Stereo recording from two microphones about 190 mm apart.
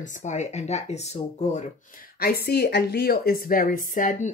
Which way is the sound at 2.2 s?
55° left (ahead or behind).